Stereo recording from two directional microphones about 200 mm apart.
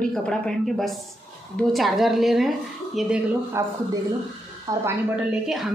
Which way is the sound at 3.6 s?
15° right (ahead or behind).